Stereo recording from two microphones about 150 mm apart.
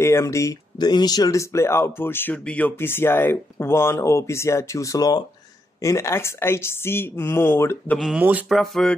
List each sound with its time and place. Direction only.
0.0 s speech: 20° left (ahead or behind)
8.0 s speech: 10° right (ahead or behind)
8.5 s speech: centre (ahead or behind)